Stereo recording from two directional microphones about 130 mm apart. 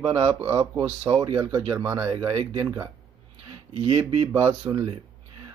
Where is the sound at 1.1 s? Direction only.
35° right (ahead or behind).